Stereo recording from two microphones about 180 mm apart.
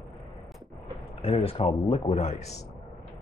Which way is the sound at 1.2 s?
30° left (ahead or behind).